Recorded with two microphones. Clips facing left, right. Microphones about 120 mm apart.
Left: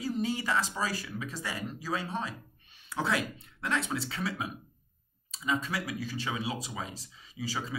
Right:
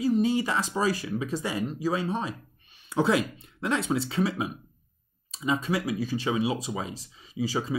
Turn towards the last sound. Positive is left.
turn(degrees=-20)  # may be behind; listen again after turning